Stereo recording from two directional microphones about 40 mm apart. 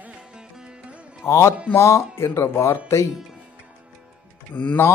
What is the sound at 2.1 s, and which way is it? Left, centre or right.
Speech, left.